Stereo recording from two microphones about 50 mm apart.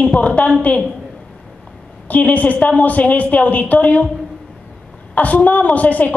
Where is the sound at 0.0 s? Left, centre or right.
Left.